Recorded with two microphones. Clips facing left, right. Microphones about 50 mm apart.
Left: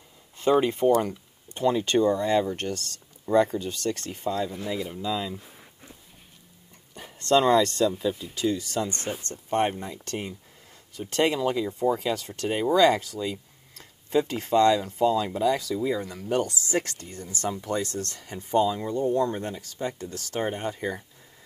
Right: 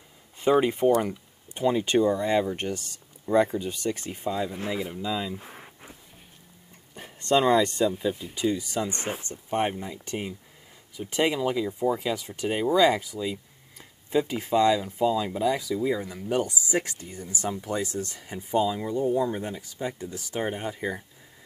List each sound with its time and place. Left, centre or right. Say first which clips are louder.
0.4 s speech: even; centre
5.4 s a sound: right 5 dB; right
6.9 s speech: left 2 dB; centre